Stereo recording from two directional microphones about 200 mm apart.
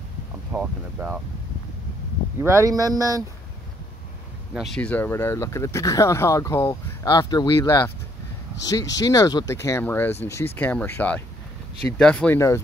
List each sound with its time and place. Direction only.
0.5 s speech: 5° right (ahead or behind)
2.4 s speech: 15° right (ahead or behind)
4.6 s speech: 5° left (ahead or behind)